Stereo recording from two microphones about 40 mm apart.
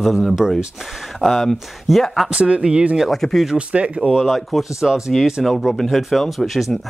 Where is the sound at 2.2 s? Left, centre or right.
Right.